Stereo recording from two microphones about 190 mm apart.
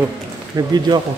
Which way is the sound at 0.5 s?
20° right (ahead or behind).